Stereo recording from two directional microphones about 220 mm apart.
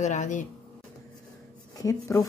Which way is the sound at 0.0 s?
35° left (ahead or behind).